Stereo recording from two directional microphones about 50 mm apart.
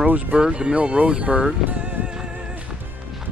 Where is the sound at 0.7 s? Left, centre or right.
Right.